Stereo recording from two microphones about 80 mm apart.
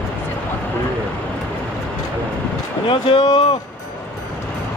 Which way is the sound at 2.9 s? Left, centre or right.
Left.